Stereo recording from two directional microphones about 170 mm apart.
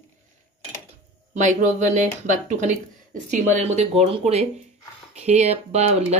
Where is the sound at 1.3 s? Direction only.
45° right (ahead or behind).